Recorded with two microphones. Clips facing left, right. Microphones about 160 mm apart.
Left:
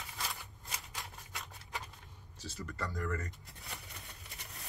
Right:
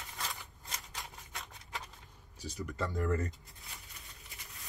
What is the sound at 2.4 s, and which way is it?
Speech, 15° right (ahead or behind).